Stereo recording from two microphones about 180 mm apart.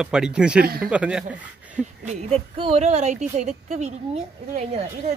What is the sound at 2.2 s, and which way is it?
Speech, 35° right (ahead or behind).